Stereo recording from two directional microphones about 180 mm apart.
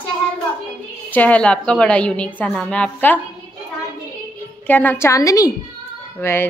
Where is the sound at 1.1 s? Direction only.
5° left (ahead or behind).